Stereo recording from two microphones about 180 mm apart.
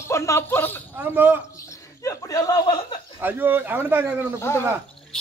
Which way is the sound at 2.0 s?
20° left (ahead or behind).